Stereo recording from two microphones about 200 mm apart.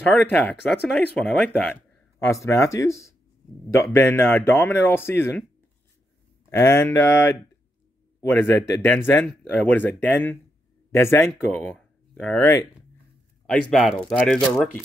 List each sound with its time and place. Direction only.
0.0 s speech: 10° left (ahead or behind)
2.1 s speech: 15° left (ahead or behind)
6.5 s speech: 10° left (ahead or behind)
13.5 s speech: centre (ahead or behind)